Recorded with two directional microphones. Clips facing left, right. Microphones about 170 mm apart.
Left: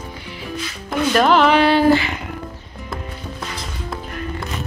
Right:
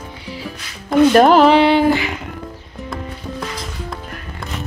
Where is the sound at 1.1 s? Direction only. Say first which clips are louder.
Right 2 dB; 40° right (ahead or behind).